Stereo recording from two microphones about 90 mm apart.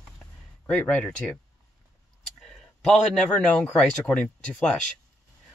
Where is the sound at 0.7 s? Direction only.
15° left (ahead or behind).